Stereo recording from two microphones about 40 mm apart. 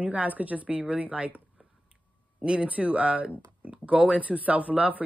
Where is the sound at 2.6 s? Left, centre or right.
Right.